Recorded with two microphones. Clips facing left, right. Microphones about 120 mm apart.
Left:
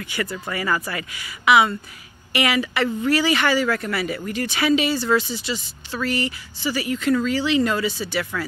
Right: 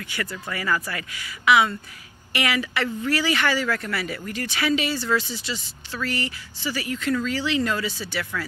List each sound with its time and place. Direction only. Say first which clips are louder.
0.1 s speech: left 4 dB; 20° left (ahead or behind)